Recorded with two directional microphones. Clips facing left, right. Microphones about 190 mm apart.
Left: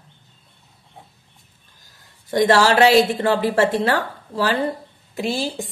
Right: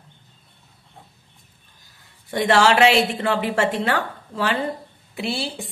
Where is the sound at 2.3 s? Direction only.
40° left (ahead or behind).